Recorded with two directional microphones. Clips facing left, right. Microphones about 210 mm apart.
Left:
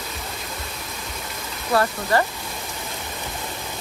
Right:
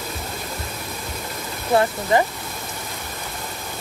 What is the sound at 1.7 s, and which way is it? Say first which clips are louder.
Speech: right 2 dB; 20° right (ahead or behind).